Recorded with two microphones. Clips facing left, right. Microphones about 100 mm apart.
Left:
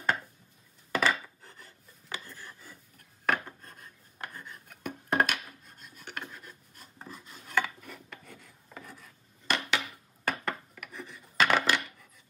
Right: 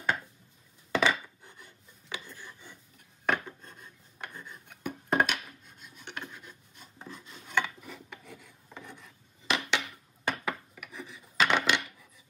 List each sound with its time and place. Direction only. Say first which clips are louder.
0.9 s rub: right 1 dB; 5° left (ahead or behind)
3.3 s filing: even; centre (ahead or behind)